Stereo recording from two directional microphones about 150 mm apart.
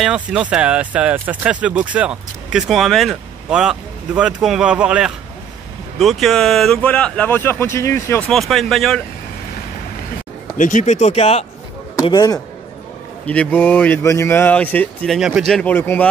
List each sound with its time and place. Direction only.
0.0 s speech: 5° right (ahead or behind); by 8.3 s 15° left (ahead or behind)
8.3 s speech: centre (ahead or behind)
10.6 s speech: 55° left (ahead or behind)
12.1 s a man's voice: 25° left (ahead or behind)
13.3 s speech: 10° left (ahead or behind)
15.1 s speech: 5° right (ahead or behind); by 16.1 s 10° left (ahead or behind)